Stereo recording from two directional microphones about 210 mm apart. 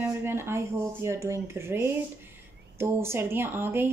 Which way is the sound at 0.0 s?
10° right (ahead or behind).